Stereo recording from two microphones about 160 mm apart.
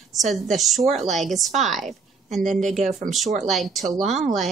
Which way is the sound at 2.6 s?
50° right (ahead or behind).